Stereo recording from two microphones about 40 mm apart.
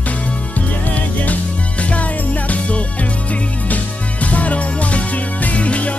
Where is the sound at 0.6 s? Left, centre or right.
Left.